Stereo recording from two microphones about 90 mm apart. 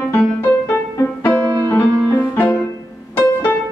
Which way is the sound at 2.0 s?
25° left (ahead or behind).